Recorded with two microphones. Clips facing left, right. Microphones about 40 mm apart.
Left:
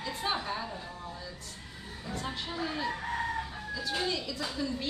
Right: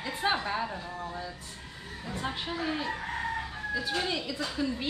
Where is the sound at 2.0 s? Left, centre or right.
Centre.